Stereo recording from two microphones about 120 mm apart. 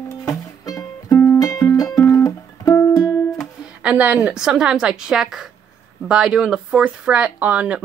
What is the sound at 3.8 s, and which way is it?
Speech, 10° right (ahead or behind).